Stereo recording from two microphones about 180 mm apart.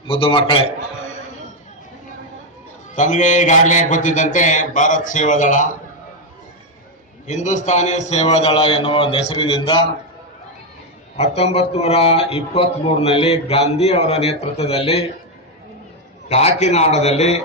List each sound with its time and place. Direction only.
0.0 s a man's voice: 30° left (ahead or behind)
3.0 s a man's voice: 45° left (ahead or behind)
7.2 s a man's voice: 40° left (ahead or behind)
11.1 s a man's voice: 35° left (ahead or behind)
16.3 s a man's voice: 35° left (ahead or behind)